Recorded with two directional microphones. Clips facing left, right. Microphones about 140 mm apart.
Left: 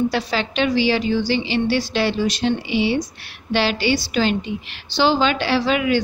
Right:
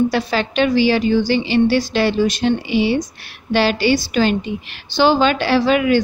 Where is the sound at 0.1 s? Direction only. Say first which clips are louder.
Right 3 dB; 50° right (ahead or behind).